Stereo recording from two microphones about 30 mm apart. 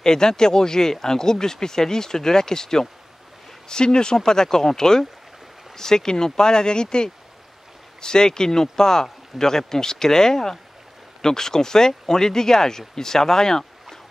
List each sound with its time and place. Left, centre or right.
0.0 s speech: left